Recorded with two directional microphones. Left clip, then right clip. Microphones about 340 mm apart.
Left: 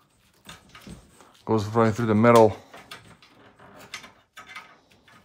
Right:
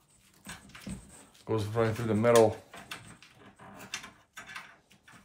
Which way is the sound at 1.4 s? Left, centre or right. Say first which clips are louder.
Left 8 dB; centre.